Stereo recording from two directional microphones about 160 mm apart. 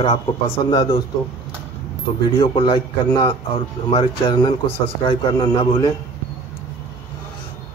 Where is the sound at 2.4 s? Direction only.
35° left (ahead or behind).